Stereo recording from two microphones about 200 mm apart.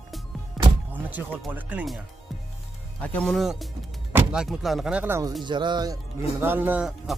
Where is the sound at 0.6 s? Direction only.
Centre (ahead or behind).